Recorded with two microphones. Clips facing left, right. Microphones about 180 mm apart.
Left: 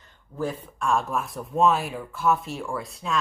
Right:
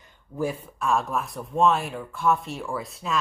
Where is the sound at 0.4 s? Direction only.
10° right (ahead or behind).